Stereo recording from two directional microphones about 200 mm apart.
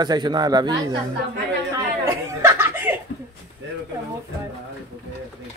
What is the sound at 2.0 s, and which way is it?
Chuckle, 15° right (ahead or behind).